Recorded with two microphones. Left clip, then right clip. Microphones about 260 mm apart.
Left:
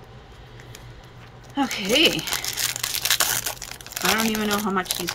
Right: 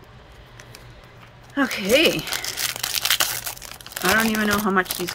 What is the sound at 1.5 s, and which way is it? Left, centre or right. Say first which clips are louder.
Speech: right 3 dB; centre.